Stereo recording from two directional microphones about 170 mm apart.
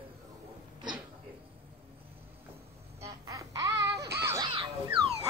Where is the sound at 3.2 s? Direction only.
20° right (ahead or behind).